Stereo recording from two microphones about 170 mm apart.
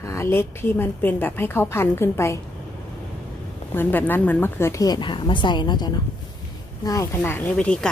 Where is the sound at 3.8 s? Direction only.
10° left (ahead or behind).